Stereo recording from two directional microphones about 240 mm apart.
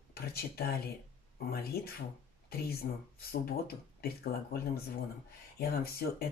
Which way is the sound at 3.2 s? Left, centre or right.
Left.